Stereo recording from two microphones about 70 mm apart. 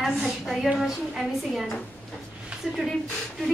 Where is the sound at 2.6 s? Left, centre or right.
Centre.